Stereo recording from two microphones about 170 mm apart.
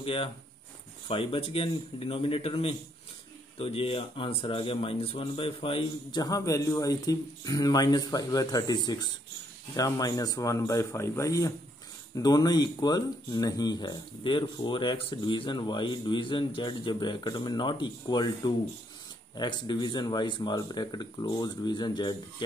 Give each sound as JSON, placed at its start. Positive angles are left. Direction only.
{"t": 0.0, "sound": "a man's voice", "side_deg": 30}